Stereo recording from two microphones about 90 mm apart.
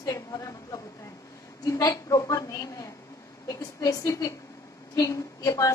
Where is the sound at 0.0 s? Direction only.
40° left (ahead or behind).